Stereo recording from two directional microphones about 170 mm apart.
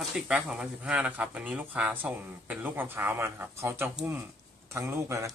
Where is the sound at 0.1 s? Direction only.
5° right (ahead or behind).